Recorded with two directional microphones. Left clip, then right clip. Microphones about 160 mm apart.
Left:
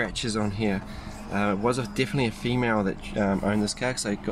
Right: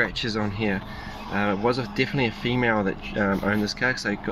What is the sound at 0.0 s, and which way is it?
Speech, 5° left (ahead or behind).